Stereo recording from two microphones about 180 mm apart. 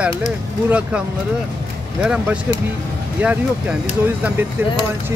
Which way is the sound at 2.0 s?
5° right (ahead or behind).